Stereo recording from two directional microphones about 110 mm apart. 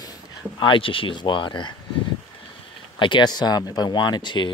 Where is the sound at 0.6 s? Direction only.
50° left (ahead or behind).